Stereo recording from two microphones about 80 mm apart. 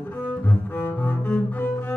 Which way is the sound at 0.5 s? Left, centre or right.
Left.